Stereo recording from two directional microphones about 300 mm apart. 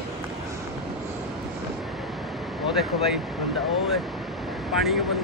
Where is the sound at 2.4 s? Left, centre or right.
Centre.